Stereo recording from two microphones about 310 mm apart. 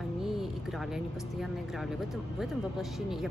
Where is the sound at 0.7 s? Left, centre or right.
Centre.